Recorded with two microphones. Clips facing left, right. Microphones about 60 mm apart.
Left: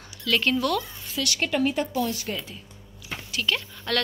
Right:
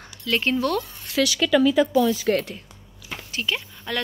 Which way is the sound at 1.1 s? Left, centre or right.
Right.